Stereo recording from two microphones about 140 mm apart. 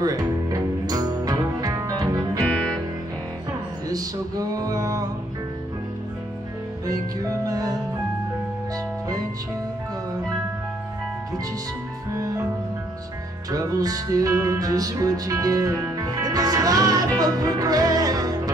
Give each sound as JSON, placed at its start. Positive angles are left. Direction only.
{"t": 0.0, "sound": "music", "side_deg": -25}
{"t": 3.9, "sound": "music", "side_deg": -25}
{"t": 6.9, "sound": "music", "side_deg": -25}
{"t": 13.5, "sound": "music", "side_deg": -25}